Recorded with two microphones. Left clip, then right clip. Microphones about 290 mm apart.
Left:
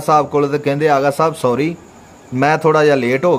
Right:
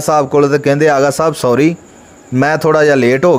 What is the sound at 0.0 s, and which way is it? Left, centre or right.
A man's voice, centre.